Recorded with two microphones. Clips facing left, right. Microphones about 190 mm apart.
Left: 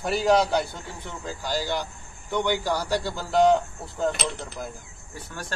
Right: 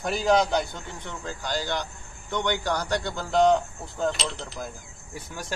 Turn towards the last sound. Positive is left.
turn(degrees=-10)  # may be behind; listen again after turning